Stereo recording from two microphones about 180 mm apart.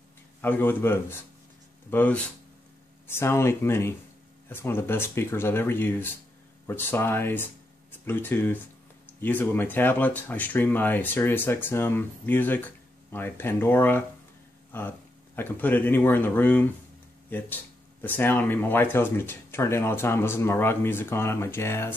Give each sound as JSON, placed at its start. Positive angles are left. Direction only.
{"t": 0.4, "sound": "speech", "side_deg": 10}